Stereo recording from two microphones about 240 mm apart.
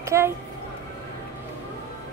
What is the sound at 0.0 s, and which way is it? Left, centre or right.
Speech, centre.